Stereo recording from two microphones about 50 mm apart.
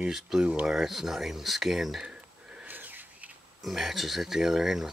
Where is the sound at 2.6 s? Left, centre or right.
Right.